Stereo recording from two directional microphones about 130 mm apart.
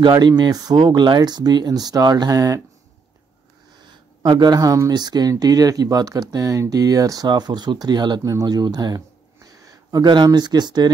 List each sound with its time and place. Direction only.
0.0 s speech: 35° right (ahead or behind)
3.8 s speech: 35° right (ahead or behind)